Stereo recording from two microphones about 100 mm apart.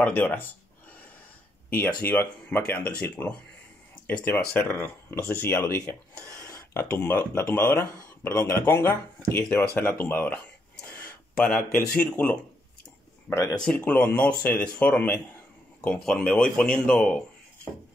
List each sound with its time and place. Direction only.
0.0 s speech: 20° left (ahead or behind)
2.0 s speech: 20° left (ahead or behind)
13.3 s speech: 25° left (ahead or behind)
13.6 s speech: 15° left (ahead or behind)